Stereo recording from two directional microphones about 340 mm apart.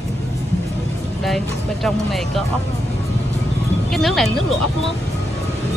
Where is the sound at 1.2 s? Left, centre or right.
Centre.